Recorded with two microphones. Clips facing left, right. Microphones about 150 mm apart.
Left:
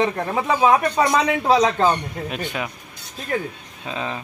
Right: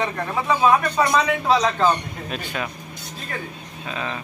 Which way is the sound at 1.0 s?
20° left (ahead or behind).